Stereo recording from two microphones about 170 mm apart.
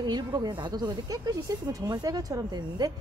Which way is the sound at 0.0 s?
25° right (ahead or behind).